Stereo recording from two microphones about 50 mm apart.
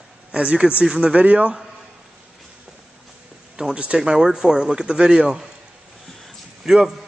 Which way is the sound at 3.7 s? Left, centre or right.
Right.